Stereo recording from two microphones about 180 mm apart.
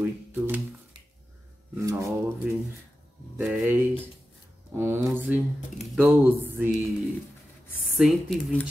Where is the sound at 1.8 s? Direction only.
15° right (ahead or behind).